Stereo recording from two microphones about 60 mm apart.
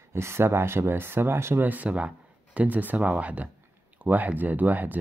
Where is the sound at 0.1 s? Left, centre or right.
Right.